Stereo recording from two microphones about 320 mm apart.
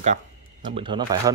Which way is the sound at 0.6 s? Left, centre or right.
Centre.